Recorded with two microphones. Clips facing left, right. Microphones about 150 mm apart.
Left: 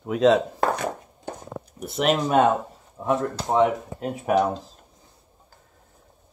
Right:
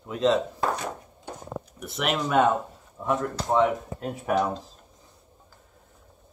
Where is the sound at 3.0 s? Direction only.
25° left (ahead or behind).